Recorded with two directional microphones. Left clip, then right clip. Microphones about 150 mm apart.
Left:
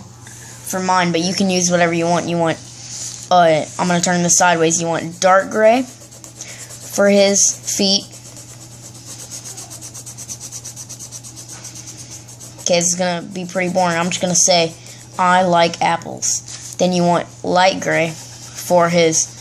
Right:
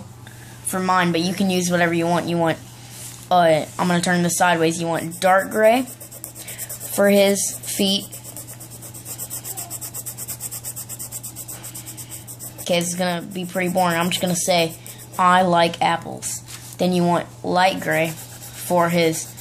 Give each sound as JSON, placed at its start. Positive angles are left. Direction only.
{"t": 0.7, "sound": "speech", "side_deg": 5}
{"t": 7.0, "sound": "speech", "side_deg": 5}
{"t": 12.9, "sound": "speech", "side_deg": 10}